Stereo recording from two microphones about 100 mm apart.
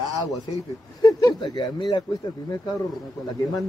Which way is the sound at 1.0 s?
40° left (ahead or behind).